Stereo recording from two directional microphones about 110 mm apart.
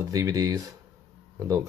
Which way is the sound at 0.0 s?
30° right (ahead or behind).